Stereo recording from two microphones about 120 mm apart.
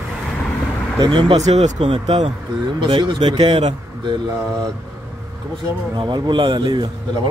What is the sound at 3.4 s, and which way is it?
Speech, 60° right (ahead or behind).